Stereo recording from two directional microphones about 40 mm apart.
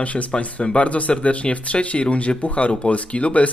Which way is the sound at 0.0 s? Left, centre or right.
Left.